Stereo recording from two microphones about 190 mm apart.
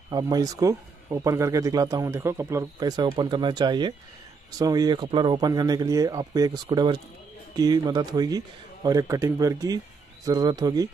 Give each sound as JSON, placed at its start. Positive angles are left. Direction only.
{"t": 0.1, "sound": "speech", "side_deg": -20}